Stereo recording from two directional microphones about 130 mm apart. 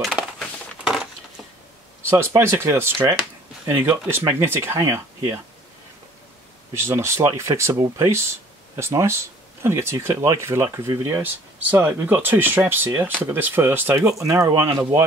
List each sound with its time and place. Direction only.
0.0 s crushing: centre (ahead or behind)
2.0 s speech: 20° right (ahead or behind)
6.7 s speech: 20° right (ahead or behind)